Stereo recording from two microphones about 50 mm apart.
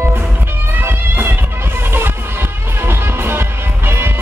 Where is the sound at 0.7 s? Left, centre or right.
Right.